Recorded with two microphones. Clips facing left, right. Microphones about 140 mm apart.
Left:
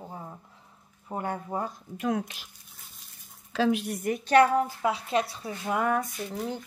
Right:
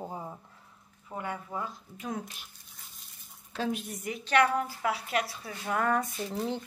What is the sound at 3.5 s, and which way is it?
Speech, 90° left.